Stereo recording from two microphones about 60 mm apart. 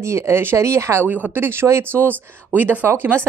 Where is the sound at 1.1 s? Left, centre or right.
Right.